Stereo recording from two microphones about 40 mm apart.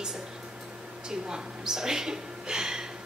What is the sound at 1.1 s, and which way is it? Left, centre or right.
A woman's voice, centre.